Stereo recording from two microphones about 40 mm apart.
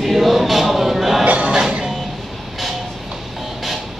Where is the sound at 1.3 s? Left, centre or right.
Right.